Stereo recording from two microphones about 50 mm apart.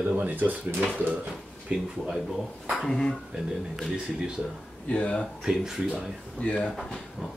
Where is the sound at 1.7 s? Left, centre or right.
Right.